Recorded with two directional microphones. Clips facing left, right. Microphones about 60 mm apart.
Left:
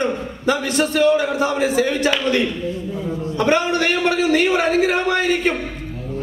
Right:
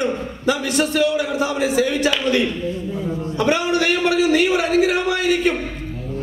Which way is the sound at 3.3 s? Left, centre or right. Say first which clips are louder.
Left 1 dB; left.